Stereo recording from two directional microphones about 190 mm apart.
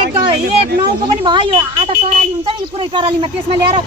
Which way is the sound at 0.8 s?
25° right (ahead or behind).